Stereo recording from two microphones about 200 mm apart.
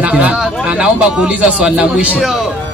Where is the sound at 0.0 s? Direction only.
5° right (ahead or behind).